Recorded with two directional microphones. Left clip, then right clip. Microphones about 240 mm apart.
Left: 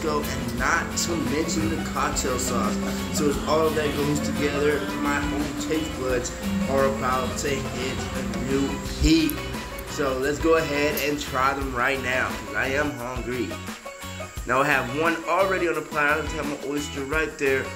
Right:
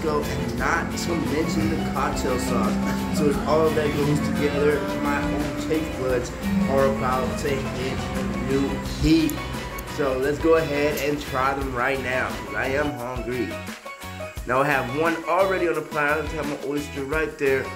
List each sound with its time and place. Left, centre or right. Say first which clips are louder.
0.0 s speech: right 2 dB; centre
9.0 s speech: right 1 dB; centre
14.5 s speech: even; centre